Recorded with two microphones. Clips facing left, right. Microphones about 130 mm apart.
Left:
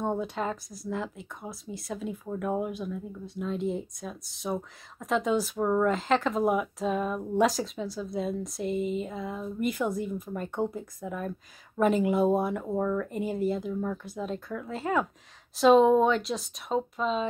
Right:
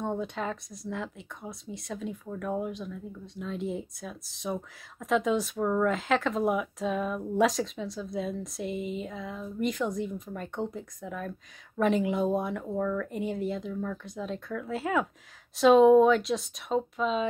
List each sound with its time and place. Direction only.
0.0 s speech: 5° left (ahead or behind)
2.2 s speech: 15° left (ahead or behind)
13.1 s speech: 5° left (ahead or behind)